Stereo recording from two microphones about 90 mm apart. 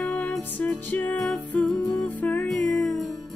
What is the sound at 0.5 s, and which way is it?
Music, 20° left (ahead or behind).